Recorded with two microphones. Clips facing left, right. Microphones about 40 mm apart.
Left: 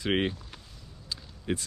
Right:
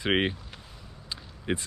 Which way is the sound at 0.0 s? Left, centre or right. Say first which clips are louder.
Right 2 dB; right.